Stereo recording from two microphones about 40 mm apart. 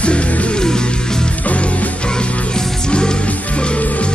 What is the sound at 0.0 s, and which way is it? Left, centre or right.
Music, left.